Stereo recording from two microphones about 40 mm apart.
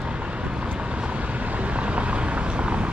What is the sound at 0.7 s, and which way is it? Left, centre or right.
Vehicle, right.